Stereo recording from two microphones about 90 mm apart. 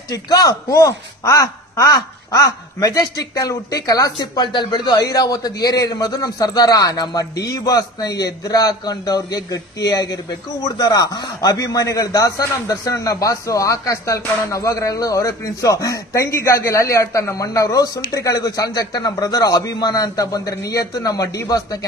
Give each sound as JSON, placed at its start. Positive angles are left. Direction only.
{"t": 0.1, "sound": "a man's voice", "side_deg": 45}
{"t": 4.4, "sound": "a man's voice", "side_deg": 60}